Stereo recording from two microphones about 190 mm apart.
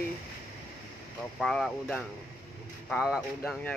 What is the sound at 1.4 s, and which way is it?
Speech, centre (ahead or behind).